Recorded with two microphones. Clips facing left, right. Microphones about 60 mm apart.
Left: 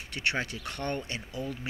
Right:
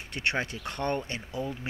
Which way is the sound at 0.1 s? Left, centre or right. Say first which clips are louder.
Right 1 dB; right.